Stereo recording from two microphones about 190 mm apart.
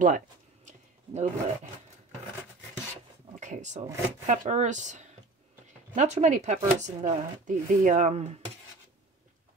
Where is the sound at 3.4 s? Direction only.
40° right (ahead or behind).